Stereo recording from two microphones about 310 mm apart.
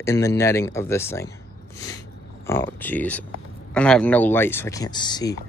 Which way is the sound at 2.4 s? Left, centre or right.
Centre.